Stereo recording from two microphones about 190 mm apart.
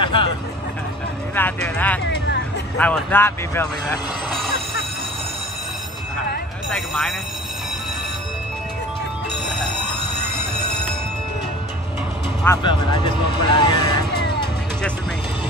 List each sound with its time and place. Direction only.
0.0 s a sound: 25° left (ahead or behind)
1.3 s speech: 10° left (ahead or behind)
4.3 s vehicle: centre (ahead or behind)
6.7 s speech: centre (ahead or behind)
12.6 s speech: 25° left (ahead or behind)